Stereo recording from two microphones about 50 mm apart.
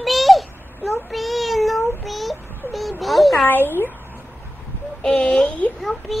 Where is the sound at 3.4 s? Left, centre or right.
Left.